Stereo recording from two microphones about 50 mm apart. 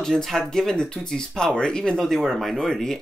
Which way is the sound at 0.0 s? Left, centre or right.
Centre.